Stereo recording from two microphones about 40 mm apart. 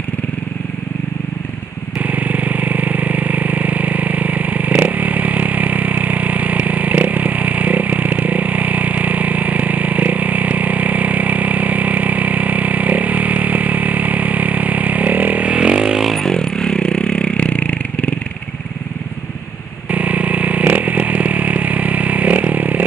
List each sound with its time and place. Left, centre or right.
2.0 s vehicle: right
15.4 s vehicle: right
16.3 s motorcycle: centre
19.9 s vehicle: right